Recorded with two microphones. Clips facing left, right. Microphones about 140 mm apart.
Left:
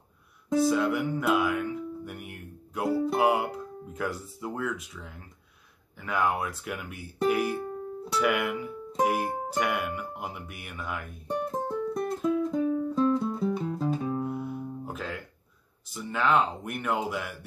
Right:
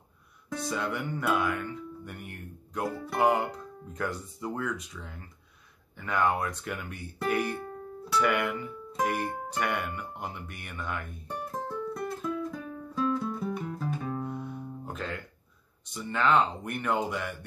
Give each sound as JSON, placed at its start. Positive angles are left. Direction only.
{"t": 0.6, "sound": "music", "side_deg": 5}
{"t": 11.2, "sound": "music", "side_deg": 25}
{"t": 14.0, "sound": "music", "side_deg": 10}